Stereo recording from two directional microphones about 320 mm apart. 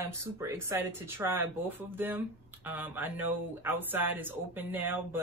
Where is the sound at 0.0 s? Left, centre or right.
Centre.